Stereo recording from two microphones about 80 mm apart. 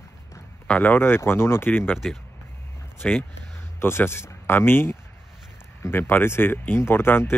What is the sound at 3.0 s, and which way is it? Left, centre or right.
Speech, centre.